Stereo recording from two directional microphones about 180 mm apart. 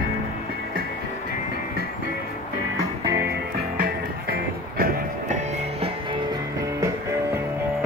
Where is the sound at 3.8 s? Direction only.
55° right (ahead or behind).